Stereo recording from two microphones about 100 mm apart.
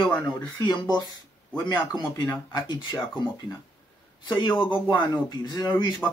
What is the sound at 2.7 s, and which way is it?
Speech, 50° left (ahead or behind).